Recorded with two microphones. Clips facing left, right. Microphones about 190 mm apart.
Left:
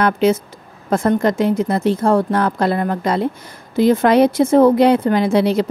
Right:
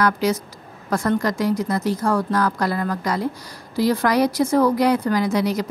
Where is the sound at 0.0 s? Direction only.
25° left (ahead or behind).